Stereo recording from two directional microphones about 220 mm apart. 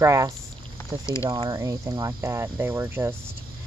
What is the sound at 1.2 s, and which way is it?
Speech, 20° right (ahead or behind).